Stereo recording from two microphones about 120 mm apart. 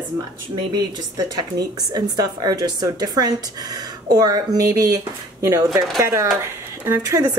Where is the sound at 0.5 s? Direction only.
35° right (ahead or behind).